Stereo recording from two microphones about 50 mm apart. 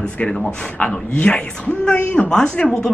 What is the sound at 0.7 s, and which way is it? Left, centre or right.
A man's voice, left.